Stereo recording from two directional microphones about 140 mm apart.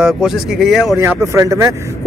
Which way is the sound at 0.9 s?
20° right (ahead or behind).